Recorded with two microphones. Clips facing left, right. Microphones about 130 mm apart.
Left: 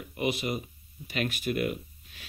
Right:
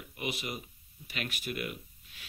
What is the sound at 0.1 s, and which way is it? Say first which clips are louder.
Speech: left 8 dB; 30° left (ahead or behind).